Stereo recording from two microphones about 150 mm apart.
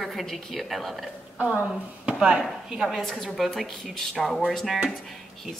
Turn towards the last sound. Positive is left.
turn(degrees=0)  # may be behind; listen again after turning